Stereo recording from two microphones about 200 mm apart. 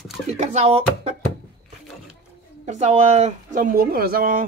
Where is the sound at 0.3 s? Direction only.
35° right (ahead or behind).